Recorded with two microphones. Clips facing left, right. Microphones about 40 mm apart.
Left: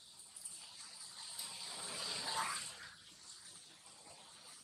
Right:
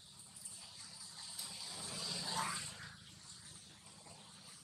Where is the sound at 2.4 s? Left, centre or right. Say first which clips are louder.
Even; centre.